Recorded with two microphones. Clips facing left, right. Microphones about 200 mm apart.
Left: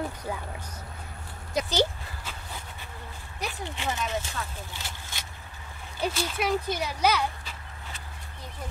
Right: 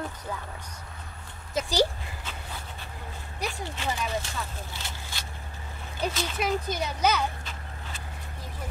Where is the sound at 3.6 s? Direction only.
15° left (ahead or behind).